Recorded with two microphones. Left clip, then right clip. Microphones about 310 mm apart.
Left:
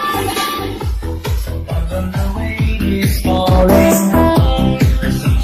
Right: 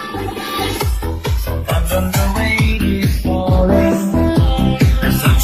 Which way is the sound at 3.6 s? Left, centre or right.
Left.